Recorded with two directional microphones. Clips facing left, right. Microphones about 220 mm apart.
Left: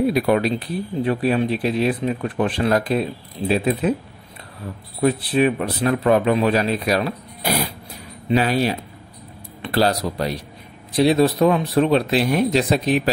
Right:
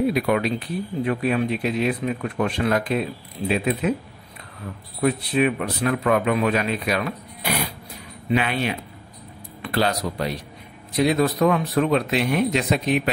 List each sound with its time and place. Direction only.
0.0 s speech: 35° left (ahead or behind)
5.0 s speech: 35° left (ahead or behind)